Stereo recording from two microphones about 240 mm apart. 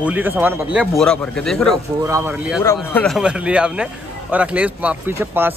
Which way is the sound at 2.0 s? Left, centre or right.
Centre.